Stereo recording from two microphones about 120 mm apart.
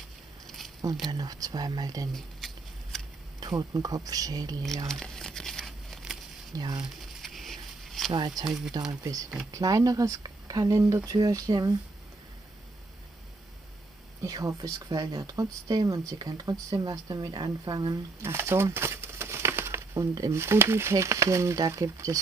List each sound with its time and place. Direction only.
1.1 s speech: 30° right (ahead or behind)
2.1 s a sound: 5° left (ahead or behind)
3.3 s speech: 30° right (ahead or behind)
4.8 s crumpling: 5° left (ahead or behind)
6.5 s speech: 35° right (ahead or behind)
7.2 s a sound: centre (ahead or behind)
8.5 s speech: 5° right (ahead or behind)
9.5 s speech: 30° right (ahead or behind)
14.2 s speech: 30° right (ahead or behind)
18.2 s crumpling: 20° right (ahead or behind)
19.9 s speech: 30° right (ahead or behind)